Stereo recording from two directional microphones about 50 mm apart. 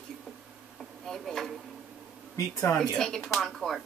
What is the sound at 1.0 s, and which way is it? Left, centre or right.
Speech, centre.